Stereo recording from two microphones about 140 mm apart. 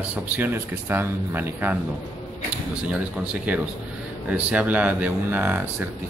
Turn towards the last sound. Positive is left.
turn(degrees=-15)  # may be behind; listen again after turning